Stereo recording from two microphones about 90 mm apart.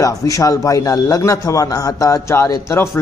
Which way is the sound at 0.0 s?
40° left (ahead or behind).